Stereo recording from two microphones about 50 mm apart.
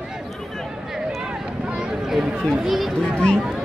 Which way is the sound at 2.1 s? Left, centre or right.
Centre.